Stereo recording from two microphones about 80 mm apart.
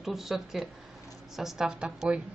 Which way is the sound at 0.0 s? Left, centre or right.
Centre.